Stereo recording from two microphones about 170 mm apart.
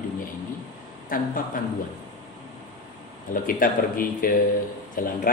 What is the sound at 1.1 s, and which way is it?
Speech, 55° left (ahead or behind).